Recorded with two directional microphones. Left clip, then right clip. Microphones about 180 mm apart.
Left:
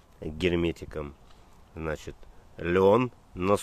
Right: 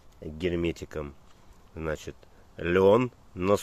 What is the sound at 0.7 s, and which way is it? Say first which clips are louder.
Speech: even; 5° right (ahead or behind).